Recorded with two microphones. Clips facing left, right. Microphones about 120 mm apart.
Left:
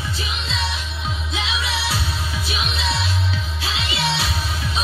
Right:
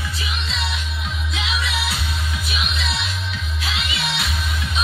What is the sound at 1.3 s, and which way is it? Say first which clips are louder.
Music: even; 30° left (ahead or behind).